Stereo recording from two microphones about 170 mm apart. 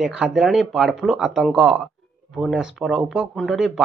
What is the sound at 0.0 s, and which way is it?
Speech, 5° right (ahead or behind).